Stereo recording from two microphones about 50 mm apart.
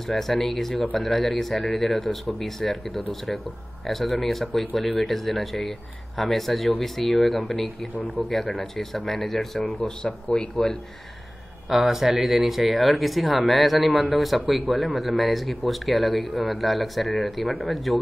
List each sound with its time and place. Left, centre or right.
0.0 s speech: centre
10.3 s speech: centre
11.7 s speech: centre